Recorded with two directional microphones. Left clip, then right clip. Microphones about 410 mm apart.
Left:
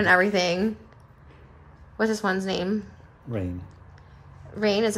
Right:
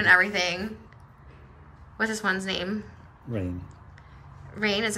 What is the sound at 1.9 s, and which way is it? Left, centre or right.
Speech, centre.